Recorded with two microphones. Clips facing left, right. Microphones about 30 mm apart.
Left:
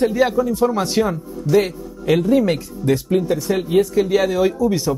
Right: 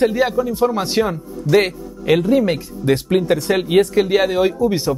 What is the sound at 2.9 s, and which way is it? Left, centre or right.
Speech, right.